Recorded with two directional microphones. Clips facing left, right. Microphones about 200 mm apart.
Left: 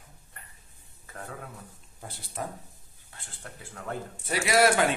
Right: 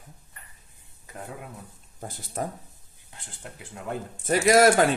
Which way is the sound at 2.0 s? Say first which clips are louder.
Right 5 dB; 45° right (ahead or behind).